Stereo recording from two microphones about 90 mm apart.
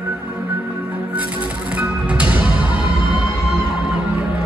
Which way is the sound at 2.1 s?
15° right (ahead or behind).